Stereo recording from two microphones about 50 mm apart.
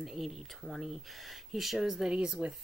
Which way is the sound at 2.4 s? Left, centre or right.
Right.